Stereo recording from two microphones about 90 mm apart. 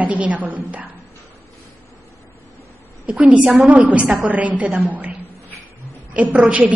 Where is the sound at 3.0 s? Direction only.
15° right (ahead or behind).